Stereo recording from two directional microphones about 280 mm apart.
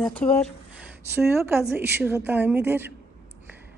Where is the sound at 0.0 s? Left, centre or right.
Centre.